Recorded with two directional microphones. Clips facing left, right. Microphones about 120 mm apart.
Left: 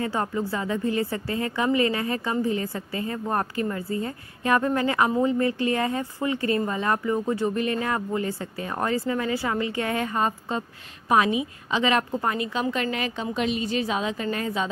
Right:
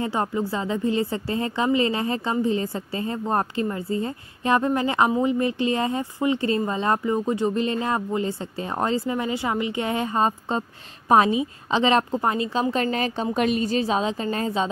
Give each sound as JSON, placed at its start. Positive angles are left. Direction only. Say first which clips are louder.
{"t": 0.0, "sound": "a woman's voice", "louder": "right 2 dB", "side_deg": -20}